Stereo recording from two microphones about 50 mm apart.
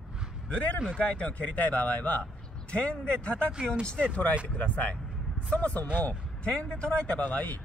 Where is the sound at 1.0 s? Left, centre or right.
Left.